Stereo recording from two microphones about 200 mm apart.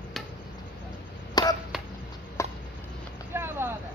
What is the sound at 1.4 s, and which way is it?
Chop, 20° left (ahead or behind).